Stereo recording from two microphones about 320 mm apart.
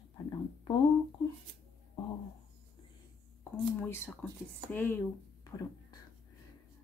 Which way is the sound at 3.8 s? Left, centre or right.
Centre.